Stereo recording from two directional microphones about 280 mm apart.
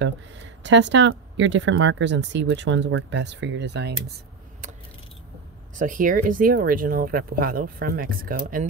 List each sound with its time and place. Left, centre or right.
0.7 s speech: right
5.8 s speech: right